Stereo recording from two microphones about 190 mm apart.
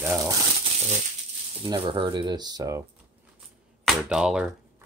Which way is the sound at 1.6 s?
25° right (ahead or behind).